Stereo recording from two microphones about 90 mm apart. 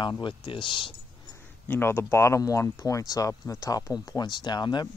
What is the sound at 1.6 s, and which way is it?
Speech, 25° left (ahead or behind).